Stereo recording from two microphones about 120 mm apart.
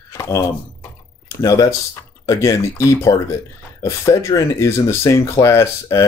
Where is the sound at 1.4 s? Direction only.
30° left (ahead or behind).